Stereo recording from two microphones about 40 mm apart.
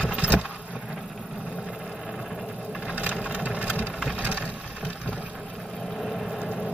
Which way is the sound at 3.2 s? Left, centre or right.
Right.